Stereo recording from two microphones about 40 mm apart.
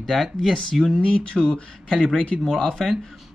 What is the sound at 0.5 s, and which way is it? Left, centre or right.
Speech, centre.